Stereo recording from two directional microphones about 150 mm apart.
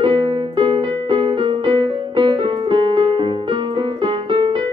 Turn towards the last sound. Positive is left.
turn(degrees=-35)  # may be behind; listen again after turning